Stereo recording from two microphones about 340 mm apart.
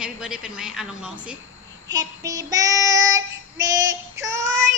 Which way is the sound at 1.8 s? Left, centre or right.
Centre.